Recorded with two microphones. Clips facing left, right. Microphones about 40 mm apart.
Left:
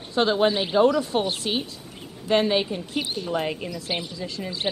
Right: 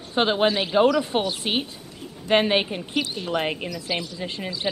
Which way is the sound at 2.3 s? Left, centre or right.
Right.